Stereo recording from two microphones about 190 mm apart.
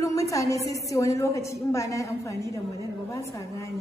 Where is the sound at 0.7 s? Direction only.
15° left (ahead or behind).